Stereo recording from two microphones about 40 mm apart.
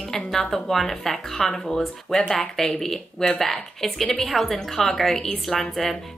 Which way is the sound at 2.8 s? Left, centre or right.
Centre.